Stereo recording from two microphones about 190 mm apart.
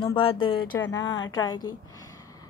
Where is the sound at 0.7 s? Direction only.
15° left (ahead or behind).